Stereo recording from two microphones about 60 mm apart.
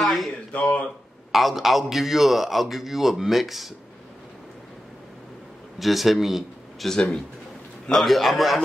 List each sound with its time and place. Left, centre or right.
0.0 s a sound: centre
0.5 s speech: left
1.3 s a man's voice: centre
5.8 s speech: centre
7.9 s a man's voice: centre